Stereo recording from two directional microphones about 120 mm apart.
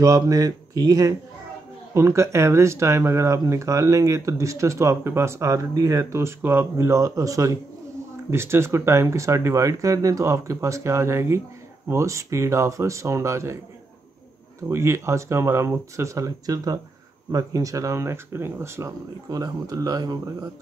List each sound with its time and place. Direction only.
0.0 s speech: 30° right (ahead or behind)
14.7 s speech: 25° right (ahead or behind)
19.2 s speech: 30° right (ahead or behind)